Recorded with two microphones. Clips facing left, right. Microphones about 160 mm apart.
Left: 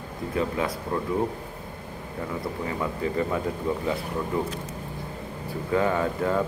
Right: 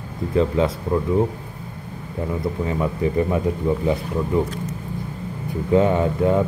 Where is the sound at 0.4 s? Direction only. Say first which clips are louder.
Right 8 dB; 25° right (ahead or behind).